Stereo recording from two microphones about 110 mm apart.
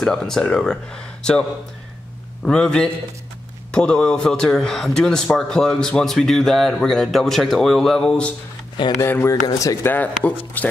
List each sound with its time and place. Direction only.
0.0 s speech: 5° left (ahead or behind)
2.4 s a man's voice: 10° left (ahead or behind)
9.0 s speech: 25° left (ahead or behind)
9.8 s speech: 15° left (ahead or behind)